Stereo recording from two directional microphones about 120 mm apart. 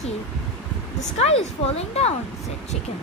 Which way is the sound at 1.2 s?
55° left (ahead or behind).